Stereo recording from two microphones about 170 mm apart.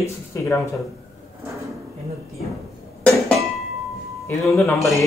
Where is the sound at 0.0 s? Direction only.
15° left (ahead or behind).